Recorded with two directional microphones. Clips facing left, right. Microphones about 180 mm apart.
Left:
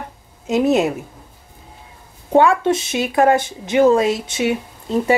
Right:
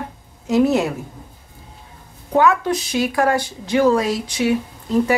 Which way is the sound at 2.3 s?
25° left (ahead or behind).